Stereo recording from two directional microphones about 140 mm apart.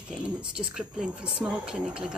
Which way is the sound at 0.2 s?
5° right (ahead or behind).